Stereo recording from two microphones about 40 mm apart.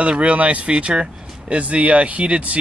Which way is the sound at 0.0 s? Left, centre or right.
Right.